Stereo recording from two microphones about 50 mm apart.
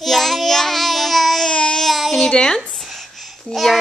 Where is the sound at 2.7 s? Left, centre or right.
Centre.